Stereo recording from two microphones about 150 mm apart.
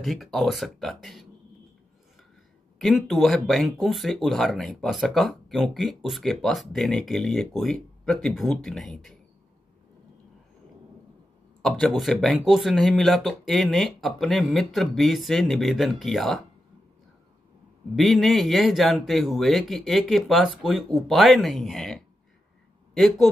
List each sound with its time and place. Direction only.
0.0 s speech: centre (ahead or behind)
2.8 s speech: centre (ahead or behind)
11.6 s speech: centre (ahead or behind)
17.9 s speech: centre (ahead or behind)